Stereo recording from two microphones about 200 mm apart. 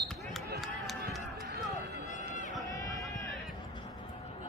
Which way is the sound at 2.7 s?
15° left (ahead or behind).